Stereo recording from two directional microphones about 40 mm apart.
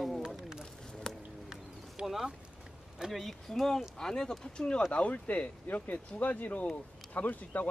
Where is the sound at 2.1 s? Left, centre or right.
Centre.